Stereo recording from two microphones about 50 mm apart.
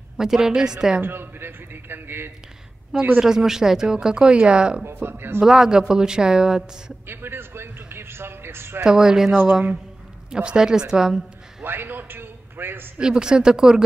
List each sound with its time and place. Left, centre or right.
0.2 s speech: centre
1.0 s a man's voice: right
3.2 s speech: centre
4.8 s a man's voice: right
5.4 s speech: centre
7.1 s a man's voice: right
8.8 s speech: centre
10.3 s speech: centre
11.6 s a sound: right
13.0 s speech: centre